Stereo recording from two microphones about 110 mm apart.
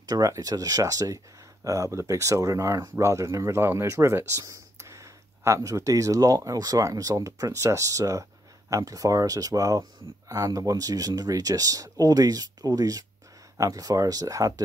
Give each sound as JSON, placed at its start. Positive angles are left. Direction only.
{"t": 0.1, "sound": "speech", "side_deg": -35}